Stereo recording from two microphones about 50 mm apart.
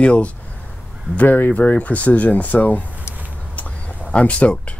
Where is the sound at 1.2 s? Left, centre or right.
Left.